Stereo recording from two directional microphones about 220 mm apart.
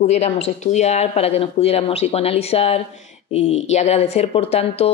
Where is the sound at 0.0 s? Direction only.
30° left (ahead or behind).